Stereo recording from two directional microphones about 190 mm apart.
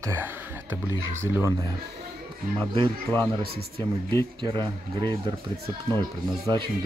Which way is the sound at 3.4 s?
55° right (ahead or behind).